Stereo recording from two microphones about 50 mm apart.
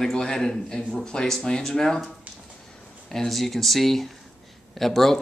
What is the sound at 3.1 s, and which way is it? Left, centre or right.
Speech, centre.